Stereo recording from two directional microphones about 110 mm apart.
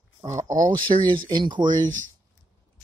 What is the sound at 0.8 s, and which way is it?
Speech, 45° right (ahead or behind).